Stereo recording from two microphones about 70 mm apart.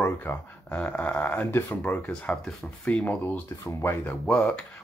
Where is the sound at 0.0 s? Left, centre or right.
Left.